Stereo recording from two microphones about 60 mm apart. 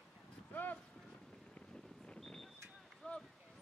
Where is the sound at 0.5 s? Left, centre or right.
Left.